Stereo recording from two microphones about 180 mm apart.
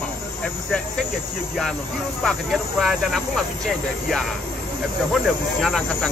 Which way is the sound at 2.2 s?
Centre (ahead or behind).